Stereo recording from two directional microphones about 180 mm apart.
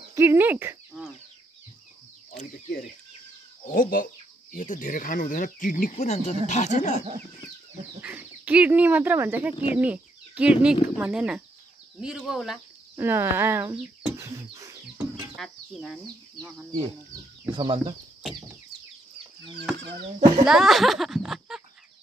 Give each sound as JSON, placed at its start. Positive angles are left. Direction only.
{"t": 0.1, "sound": "speech", "side_deg": -15}
{"t": 2.3, "sound": "speech", "side_deg": 50}
{"t": 8.0, "sound": "speech", "side_deg": -10}
{"t": 12.9, "sound": "speech", "side_deg": -15}
{"t": 15.3, "sound": "speech", "side_deg": 0}
{"t": 17.6, "sound": "speech", "side_deg": -30}
{"t": 20.4, "sound": "speech", "side_deg": 0}